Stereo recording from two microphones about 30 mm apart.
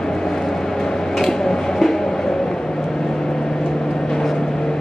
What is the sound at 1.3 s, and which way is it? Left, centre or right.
Vehicle, centre.